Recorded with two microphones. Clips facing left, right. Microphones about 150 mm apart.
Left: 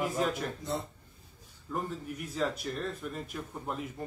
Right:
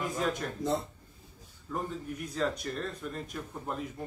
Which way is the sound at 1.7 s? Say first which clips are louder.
Even; 5° left (ahead or behind).